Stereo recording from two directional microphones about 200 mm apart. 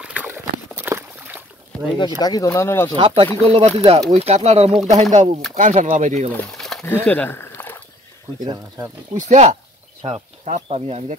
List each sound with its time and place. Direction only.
0.0 s a sound: 5° right (ahead or behind)
2.0 s speech: 20° left (ahead or behind)
3.0 s speech: 25° right (ahead or behind)
6.3 s a sound: 5° left (ahead or behind)
8.5 s speech: 15° right (ahead or behind)
9.1 s speech: 35° right (ahead or behind)